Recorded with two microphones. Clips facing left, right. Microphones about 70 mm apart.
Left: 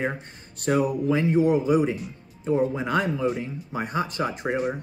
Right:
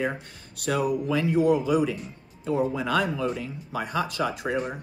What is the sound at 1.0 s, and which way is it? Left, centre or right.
Speech, left.